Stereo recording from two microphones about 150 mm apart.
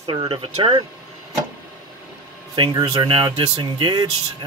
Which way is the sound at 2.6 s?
30° right (ahead or behind).